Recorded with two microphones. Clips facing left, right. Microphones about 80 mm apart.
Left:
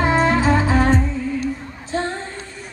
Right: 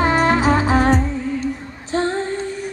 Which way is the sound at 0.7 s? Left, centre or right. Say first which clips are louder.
Right 1 dB; right.